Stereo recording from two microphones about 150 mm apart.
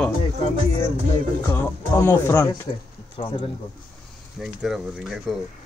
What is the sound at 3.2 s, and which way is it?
Speech, 40° left (ahead or behind).